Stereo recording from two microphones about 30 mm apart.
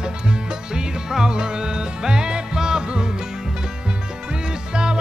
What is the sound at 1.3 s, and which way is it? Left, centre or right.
Music, right.